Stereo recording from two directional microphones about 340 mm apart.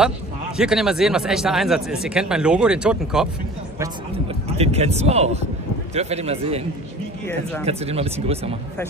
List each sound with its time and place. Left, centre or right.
0.6 s speech: centre
4.6 s a man's voice: centre
7.6 s speech: centre